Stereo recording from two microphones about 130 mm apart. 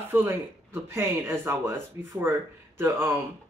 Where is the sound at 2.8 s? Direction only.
20° right (ahead or behind).